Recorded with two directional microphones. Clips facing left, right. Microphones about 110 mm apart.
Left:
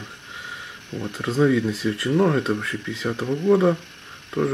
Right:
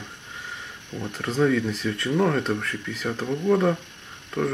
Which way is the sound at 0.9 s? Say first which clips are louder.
Left 3 dB; 5° left (ahead or behind).